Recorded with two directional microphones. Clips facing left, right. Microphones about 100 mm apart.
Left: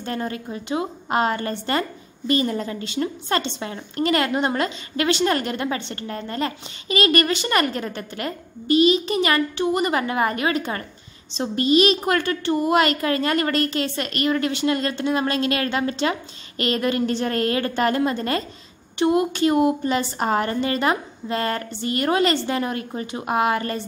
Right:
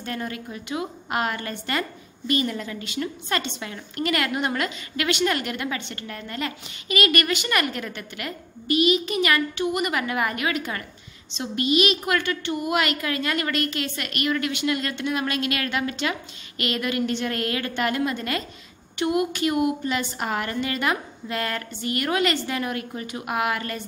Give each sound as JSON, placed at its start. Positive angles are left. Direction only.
{"t": 0.0, "sound": "a woman's voice", "side_deg": 30}